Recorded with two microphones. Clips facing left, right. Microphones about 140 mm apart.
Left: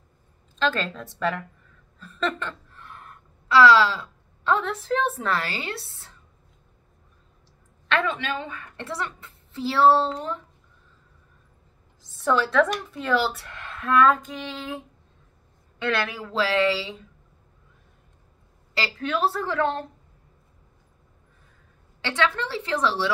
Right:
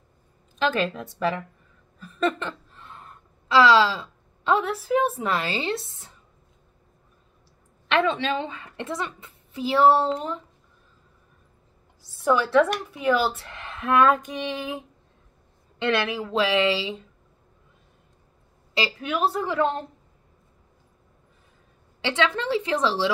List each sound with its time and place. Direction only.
0.6 s a woman's voice: 15° right (ahead or behind)
2.0 s a sound: 10° right (ahead or behind)
4.6 s a woman's voice: 10° right (ahead or behind)
7.9 s a woman's voice: 25° right (ahead or behind)
12.2 s a woman's voice: 10° right (ahead or behind)
15.8 s a woman's voice: 25° right (ahead or behind)
18.8 s a woman's voice: 10° right (ahead or behind)
22.0 s a woman's voice: 20° right (ahead or behind)